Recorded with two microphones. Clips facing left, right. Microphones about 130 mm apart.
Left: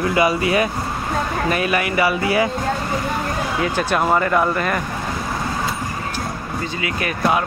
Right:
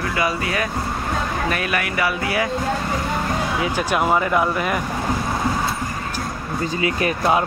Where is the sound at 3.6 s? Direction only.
10° right (ahead or behind).